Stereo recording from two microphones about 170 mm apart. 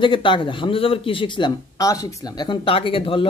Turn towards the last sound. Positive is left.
turn(degrees=30)  # may be behind; listen again after turning